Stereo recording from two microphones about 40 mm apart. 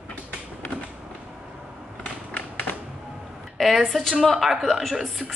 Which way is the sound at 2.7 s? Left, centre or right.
Left.